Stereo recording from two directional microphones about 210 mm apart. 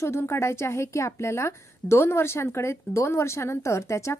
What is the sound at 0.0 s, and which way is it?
A woman's voice, 10° left (ahead or behind).